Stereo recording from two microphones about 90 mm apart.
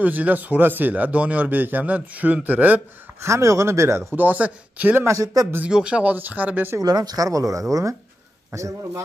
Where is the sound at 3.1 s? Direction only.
35° right (ahead or behind).